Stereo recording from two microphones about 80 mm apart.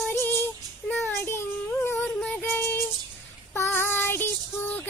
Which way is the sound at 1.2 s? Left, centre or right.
Left.